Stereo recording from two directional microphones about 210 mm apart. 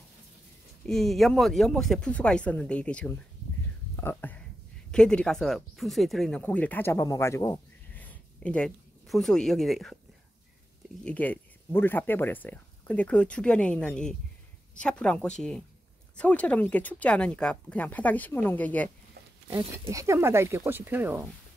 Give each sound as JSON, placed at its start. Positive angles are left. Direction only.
{"t": 0.8, "sound": "speech", "side_deg": 0}
{"t": 3.9, "sound": "whispering", "side_deg": 10}
{"t": 4.9, "sound": "speech", "side_deg": 5}
{"t": 11.1, "sound": "speech", "side_deg": 10}
{"t": 19.9, "sound": "speech", "side_deg": -15}